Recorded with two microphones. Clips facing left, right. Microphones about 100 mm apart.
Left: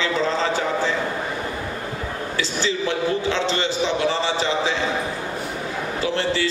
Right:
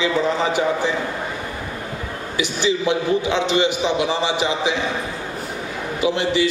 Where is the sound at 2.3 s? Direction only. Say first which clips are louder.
Right 5 dB; 15° right (ahead or behind).